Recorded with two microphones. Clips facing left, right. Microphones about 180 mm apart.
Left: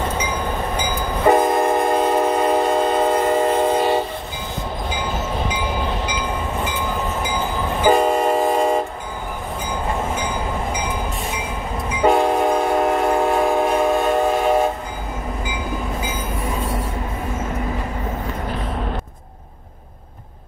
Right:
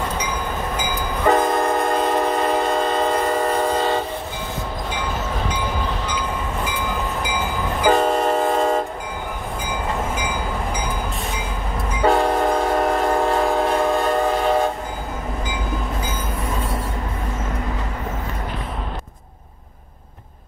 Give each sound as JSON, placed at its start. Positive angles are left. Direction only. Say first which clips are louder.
{"t": 1.2, "sound": "train", "louder": "left 2 dB", "side_deg": 20}
{"t": 7.9, "sound": "train", "louder": "left 1 dB", "side_deg": 5}
{"t": 12.0, "sound": "train", "louder": "left 1 dB", "side_deg": 15}